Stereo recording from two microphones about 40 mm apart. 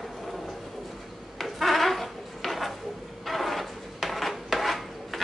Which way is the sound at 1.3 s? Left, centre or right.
Centre.